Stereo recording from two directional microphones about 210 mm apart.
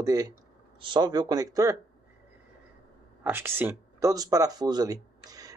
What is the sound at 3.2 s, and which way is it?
Speech, 10° right (ahead or behind).